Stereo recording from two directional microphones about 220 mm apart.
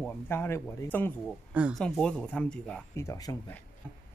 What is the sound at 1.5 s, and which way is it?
Speech, 5° right (ahead or behind).